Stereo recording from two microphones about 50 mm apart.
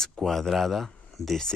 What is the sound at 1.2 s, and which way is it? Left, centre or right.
Speech, left.